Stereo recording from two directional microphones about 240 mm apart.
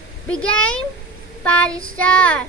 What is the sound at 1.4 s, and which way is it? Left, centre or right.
Speech, centre.